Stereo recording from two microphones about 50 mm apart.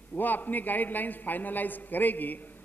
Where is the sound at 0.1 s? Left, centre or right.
Left.